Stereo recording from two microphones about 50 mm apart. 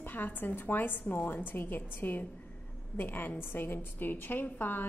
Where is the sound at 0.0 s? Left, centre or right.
Left.